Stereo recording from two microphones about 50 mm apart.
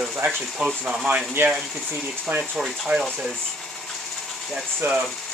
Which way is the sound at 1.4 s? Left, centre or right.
Right.